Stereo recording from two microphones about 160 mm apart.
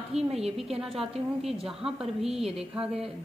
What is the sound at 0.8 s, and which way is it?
A woman's voice, centre (ahead or behind).